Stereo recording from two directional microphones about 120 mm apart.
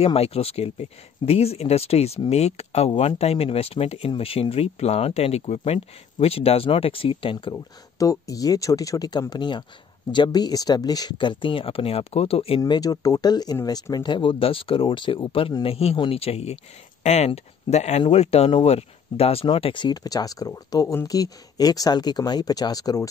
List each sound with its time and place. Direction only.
0.0 s speech: 55° left (ahead or behind)
7.5 s speech: 30° left (ahead or behind); by 12.7 s 50° left (ahead or behind)
12.7 s speech: 30° left (ahead or behind); by 16.5 s 60° left (ahead or behind)
17.0 s speech: 70° left (ahead or behind); by 23.0 s 30° left (ahead or behind)